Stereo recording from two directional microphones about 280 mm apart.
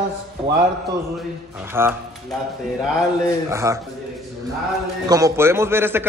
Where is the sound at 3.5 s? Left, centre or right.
Centre.